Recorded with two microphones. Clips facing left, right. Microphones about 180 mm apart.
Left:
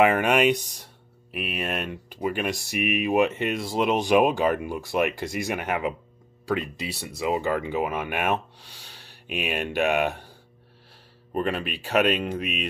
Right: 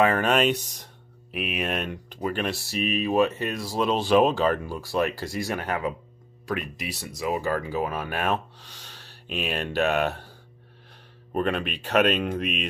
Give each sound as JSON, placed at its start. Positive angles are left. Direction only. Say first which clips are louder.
{"t": 0.0, "sound": "speech", "louder": "left 2 dB", "side_deg": 15}
{"t": 11.3, "sound": "speech", "louder": "right 1 dB", "side_deg": 5}